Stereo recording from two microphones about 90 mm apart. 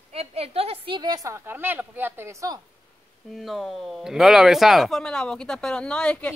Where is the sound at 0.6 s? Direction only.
80° right.